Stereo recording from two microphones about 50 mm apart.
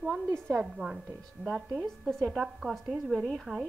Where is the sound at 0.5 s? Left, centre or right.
Right.